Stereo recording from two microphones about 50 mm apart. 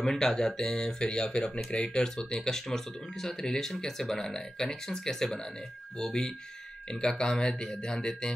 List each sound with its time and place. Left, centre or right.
0.0 s speech: centre